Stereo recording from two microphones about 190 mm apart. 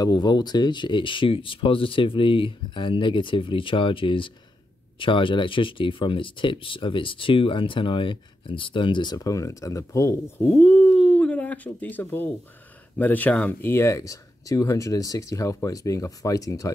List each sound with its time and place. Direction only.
0.0 s speech: 20° left (ahead or behind)